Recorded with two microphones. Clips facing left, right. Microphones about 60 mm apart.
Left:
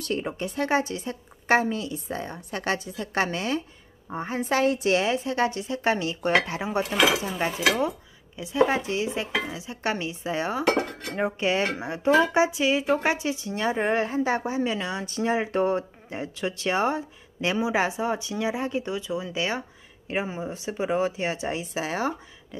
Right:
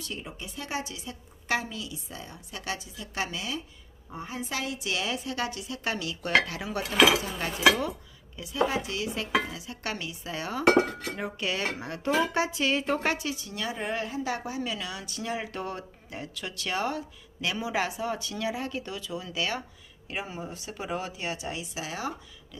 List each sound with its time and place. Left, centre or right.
0.0 s a woman's voice: left